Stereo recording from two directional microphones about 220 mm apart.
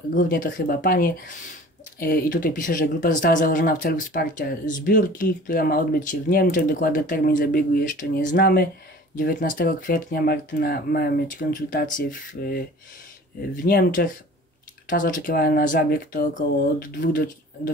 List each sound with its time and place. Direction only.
0.1 s speech: 35° left (ahead or behind)
13.7 s speech: 40° left (ahead or behind)